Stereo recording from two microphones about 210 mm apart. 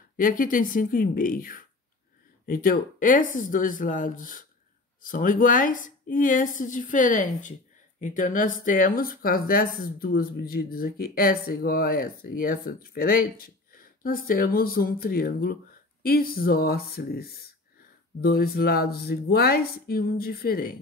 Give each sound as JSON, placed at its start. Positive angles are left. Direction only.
{"t": 0.2, "sound": "a woman's voice", "side_deg": 40}